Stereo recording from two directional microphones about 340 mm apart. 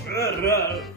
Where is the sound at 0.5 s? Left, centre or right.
Centre.